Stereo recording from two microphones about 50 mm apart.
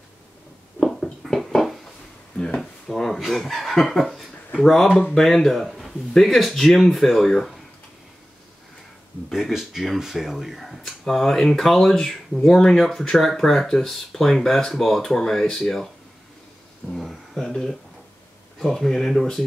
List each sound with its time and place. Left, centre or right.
0.7 s a sound: centre
2.3 s a sound: left
2.6 s drawer open or close: centre
3.3 s speech: centre
9.3 s speech: centre
16.9 s speech: centre